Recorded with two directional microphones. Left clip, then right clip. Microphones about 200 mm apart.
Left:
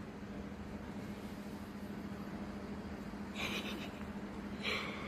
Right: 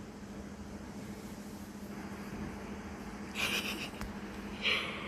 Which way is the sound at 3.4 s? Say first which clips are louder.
Right 7 dB; centre (ahead or behind).